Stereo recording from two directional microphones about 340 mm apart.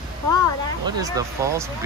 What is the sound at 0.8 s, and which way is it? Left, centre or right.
Speech, centre.